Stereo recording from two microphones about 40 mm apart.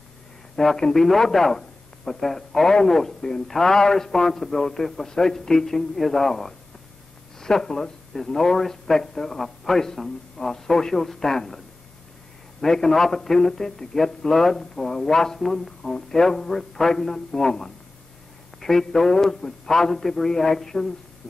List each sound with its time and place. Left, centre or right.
0.7 s a man's voice: centre